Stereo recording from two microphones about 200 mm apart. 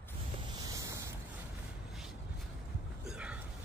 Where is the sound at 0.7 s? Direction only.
15° right (ahead or behind).